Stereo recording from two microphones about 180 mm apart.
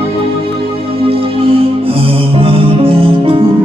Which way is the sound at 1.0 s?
30° right (ahead or behind).